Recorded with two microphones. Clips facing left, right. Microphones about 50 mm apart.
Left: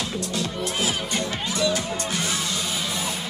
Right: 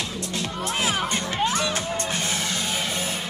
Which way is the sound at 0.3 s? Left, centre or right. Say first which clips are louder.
Left 1 dB; right.